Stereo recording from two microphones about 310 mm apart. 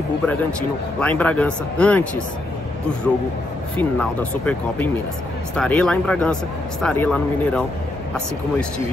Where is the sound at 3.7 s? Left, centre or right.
Centre.